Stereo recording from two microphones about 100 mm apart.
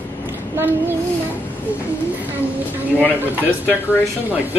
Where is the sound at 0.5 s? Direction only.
20° right (ahead or behind).